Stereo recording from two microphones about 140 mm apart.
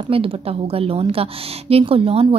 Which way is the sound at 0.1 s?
40° right (ahead or behind).